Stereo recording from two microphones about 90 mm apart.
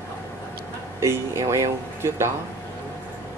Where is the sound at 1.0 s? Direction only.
35° right (ahead or behind).